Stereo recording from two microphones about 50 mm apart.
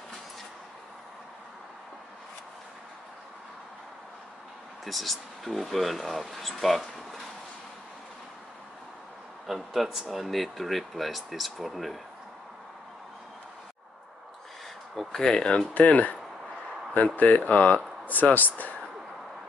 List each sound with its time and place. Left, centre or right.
4.8 s speech: centre
9.5 s speech: centre
15.1 s speech: centre
15.8 s speech: left